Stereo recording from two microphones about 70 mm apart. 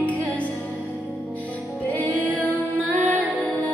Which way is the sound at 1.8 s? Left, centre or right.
Left.